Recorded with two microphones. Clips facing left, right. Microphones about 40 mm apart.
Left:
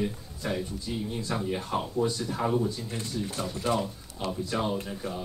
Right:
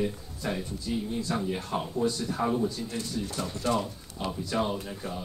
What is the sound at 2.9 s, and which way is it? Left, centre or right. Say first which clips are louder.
Speech: even; centre.